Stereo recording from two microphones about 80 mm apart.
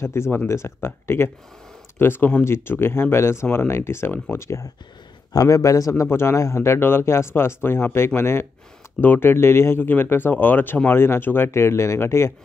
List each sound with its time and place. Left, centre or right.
0.0 s a man's voice: left